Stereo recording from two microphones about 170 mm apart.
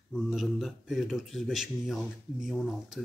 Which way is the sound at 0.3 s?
Centre (ahead or behind).